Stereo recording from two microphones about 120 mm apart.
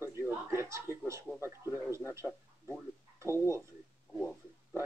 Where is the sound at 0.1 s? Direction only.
20° right (ahead or behind).